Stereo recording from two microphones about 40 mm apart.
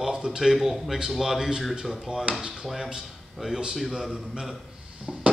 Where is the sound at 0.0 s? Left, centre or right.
Centre.